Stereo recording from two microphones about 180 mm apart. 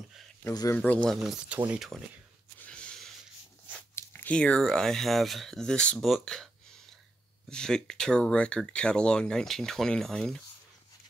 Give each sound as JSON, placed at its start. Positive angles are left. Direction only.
{"t": 0.4, "sound": "speech", "side_deg": 15}
{"t": 2.6, "sound": "a sound", "side_deg": 5}
{"t": 3.7, "sound": "speech", "side_deg": 10}